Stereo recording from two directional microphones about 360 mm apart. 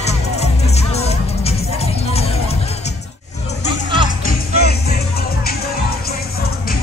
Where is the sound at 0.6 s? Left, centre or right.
Centre.